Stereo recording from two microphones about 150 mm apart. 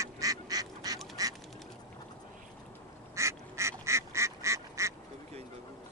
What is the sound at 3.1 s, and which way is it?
Duck, 20° right (ahead or behind).